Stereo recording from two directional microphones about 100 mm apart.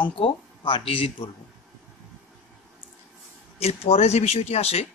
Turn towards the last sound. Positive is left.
turn(degrees=90)